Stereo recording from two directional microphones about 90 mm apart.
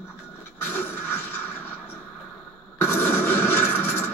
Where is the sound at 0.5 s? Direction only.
25° left (ahead or behind).